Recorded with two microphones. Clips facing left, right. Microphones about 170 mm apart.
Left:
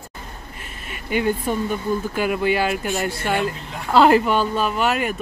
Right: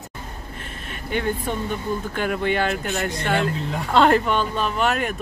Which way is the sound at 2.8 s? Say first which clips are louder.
Left 1 dB; 15° left (ahead or behind).